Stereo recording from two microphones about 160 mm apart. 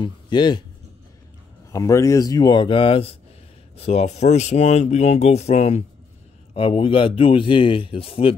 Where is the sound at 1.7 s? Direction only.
20° left (ahead or behind); by 8.3 s 35° left (ahead or behind).